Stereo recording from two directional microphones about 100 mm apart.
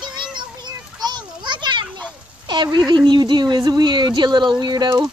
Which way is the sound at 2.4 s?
50° right (ahead or behind).